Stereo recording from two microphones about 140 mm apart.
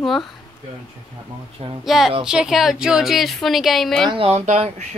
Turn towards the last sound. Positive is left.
turn(degrees=-55)  # may be behind; listen again after turning